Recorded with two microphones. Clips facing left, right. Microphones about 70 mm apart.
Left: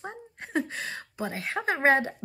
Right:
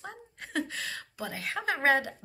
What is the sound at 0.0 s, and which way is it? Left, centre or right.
A woman's voice, left.